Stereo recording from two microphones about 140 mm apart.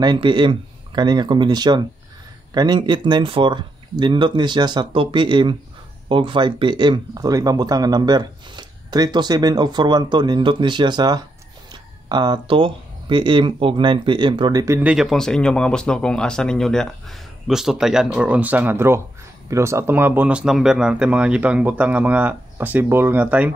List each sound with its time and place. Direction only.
0.0 s speech: 35° right (ahead or behind)
14.8 s speech: 5° right (ahead or behind)